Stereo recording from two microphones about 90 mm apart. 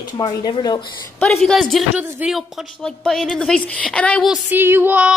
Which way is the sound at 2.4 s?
5° left (ahead or behind).